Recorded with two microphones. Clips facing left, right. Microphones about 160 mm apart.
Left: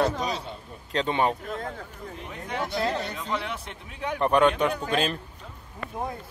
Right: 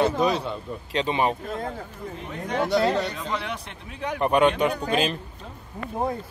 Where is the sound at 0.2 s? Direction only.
60° right (ahead or behind).